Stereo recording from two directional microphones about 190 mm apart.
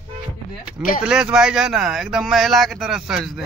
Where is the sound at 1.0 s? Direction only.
5° right (ahead or behind).